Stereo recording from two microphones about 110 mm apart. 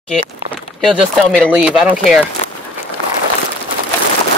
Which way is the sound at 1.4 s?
10° right (ahead or behind).